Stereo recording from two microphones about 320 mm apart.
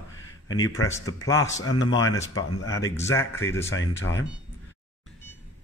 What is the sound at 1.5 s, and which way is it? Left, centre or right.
Speech, left.